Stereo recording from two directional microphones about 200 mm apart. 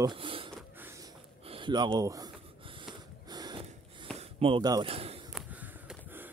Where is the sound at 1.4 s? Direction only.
25° right (ahead or behind).